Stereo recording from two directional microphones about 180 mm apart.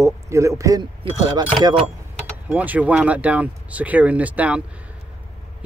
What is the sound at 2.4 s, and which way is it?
Speech, 10° right (ahead or behind).